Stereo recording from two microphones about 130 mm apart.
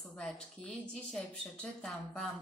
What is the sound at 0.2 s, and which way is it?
Speech, 5° left (ahead or behind).